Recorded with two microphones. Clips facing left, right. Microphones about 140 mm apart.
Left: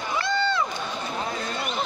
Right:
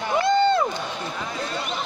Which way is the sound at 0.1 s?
45° right (ahead or behind).